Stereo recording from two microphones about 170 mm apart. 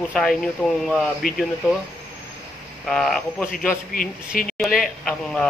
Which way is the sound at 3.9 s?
55° left (ahead or behind).